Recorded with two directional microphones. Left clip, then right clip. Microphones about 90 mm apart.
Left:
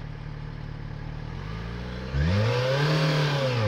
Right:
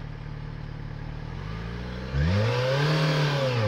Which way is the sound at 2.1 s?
50° left (ahead or behind).